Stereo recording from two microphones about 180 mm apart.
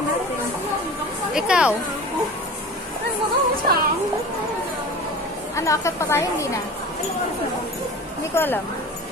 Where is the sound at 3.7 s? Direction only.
60° right (ahead or behind).